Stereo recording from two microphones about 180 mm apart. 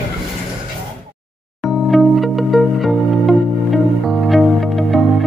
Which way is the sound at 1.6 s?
Centre (ahead or behind).